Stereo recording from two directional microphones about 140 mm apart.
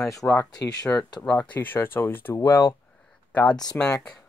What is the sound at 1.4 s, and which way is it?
Speech, 10° left (ahead or behind).